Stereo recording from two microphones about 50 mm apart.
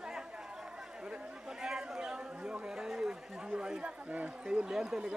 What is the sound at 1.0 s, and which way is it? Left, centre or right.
Chatter, centre.